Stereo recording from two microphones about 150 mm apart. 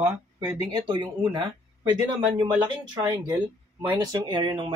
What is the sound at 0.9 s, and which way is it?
Speech, 30° right (ahead or behind).